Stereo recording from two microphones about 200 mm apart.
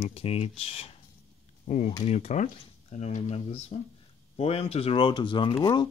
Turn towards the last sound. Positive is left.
turn(degrees=20)  # may be behind; listen again after turning